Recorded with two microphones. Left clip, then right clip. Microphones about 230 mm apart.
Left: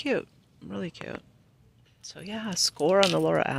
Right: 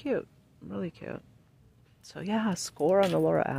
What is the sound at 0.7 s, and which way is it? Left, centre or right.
Speech, centre.